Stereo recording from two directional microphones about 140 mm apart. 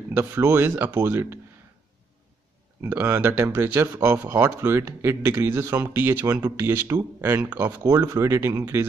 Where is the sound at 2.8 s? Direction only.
15° right (ahead or behind).